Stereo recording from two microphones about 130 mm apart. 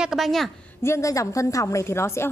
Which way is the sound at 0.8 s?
20° left (ahead or behind).